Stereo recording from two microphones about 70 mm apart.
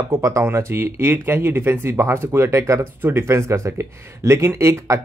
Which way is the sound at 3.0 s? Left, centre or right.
Right.